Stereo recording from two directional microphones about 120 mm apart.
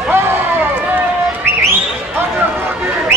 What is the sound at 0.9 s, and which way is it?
Run, 20° right (ahead or behind).